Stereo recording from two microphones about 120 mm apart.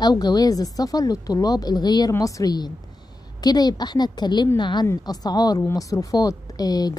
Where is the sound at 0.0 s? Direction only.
35° left (ahead or behind).